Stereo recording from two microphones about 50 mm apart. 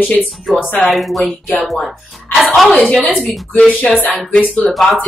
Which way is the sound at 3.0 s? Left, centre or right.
Left.